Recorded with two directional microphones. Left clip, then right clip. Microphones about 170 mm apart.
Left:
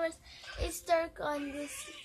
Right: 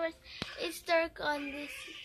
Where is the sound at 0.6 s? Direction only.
10° right (ahead or behind).